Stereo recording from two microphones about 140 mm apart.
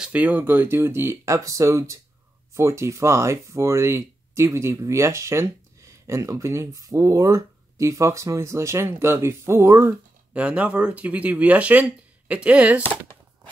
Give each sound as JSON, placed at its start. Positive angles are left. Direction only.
{"t": 0.0, "sound": "speech", "side_deg": -10}